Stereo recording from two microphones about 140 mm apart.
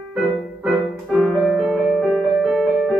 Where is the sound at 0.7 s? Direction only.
5° right (ahead or behind).